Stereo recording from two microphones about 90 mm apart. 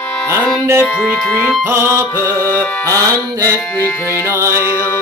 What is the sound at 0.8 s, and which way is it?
Speech, 20° left (ahead or behind).